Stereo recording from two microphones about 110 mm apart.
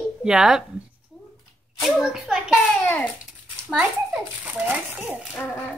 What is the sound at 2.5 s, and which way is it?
Speech, 15° left (ahead or behind).